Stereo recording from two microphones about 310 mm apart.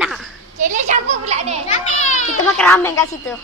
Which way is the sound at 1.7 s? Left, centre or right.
Left.